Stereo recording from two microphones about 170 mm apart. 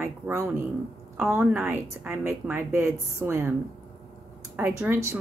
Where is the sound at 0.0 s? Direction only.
15° right (ahead or behind).